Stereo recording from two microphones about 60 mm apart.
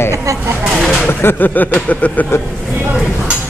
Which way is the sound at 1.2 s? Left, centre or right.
Left.